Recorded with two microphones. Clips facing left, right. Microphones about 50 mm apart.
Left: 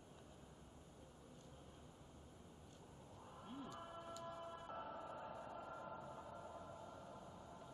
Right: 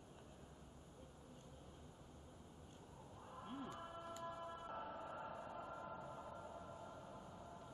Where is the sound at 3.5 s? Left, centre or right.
Right.